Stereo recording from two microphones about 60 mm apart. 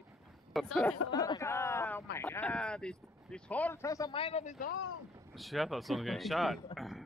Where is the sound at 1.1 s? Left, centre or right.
Left.